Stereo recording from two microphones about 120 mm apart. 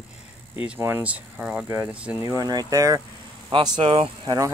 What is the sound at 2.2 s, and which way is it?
Speech, 30° right (ahead or behind).